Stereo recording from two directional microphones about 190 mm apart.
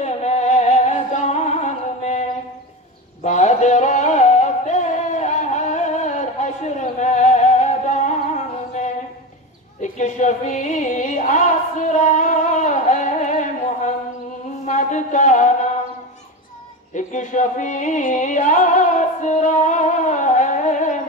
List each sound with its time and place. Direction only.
0.0 s music: 35° left (ahead or behind)
3.3 s music: 40° left (ahead or behind)
14.7 s a sound: 40° left (ahead or behind)
16.9 s music: 40° left (ahead or behind)